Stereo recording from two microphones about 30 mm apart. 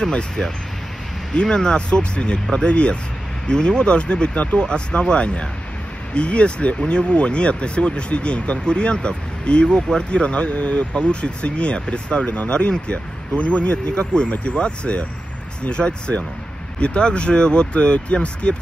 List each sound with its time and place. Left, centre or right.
0.0 s speech: left
9.8 s speech: left
10.0 s speech: left
11.0 s speech: left
13.9 s speech: left
14.3 s speech: left